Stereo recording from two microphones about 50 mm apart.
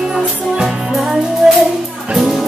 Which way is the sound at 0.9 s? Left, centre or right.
Centre.